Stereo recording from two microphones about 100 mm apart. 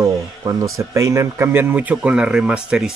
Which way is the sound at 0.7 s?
30° right (ahead or behind).